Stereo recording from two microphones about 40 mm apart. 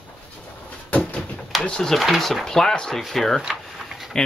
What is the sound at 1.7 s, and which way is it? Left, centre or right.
Speech, centre.